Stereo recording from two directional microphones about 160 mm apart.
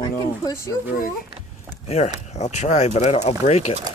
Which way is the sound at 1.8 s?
40° left (ahead or behind).